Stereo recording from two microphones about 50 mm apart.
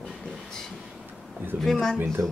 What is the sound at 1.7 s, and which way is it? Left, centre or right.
Speech, centre.